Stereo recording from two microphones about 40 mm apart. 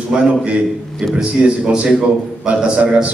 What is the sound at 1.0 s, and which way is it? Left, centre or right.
Speech, right.